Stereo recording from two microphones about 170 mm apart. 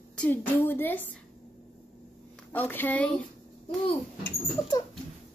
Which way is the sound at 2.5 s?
10° left (ahead or behind).